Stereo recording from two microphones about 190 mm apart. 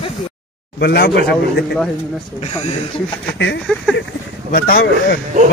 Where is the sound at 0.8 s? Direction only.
60° left (ahead or behind).